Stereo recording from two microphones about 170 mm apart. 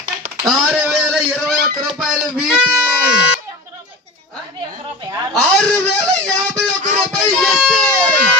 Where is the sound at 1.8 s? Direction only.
Centre (ahead or behind).